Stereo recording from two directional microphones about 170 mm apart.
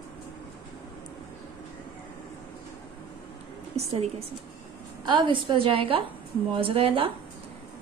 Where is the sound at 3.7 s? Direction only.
40° right (ahead or behind).